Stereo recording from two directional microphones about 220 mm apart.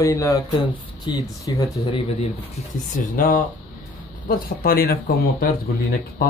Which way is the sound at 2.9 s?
35° left (ahead or behind).